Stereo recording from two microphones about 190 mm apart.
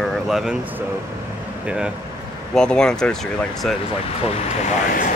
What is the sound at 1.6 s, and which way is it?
Speech, 5° right (ahead or behind).